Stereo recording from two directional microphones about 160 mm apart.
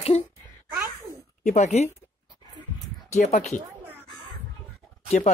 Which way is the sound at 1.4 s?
45° left (ahead or behind).